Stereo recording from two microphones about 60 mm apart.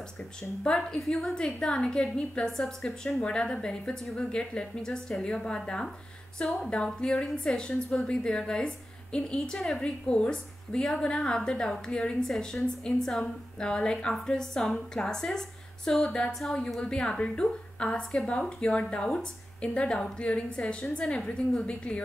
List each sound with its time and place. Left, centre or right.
0.2 s a woman's voice: centre